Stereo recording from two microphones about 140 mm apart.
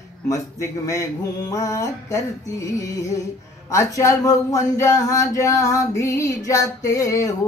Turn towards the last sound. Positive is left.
turn(degrees=25)  # may be behind; listen again after turning